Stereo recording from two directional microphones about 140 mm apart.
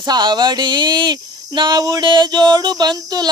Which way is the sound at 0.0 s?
30° right (ahead or behind).